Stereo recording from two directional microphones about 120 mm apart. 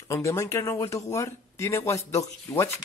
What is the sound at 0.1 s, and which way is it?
Speech, 25° left (ahead or behind).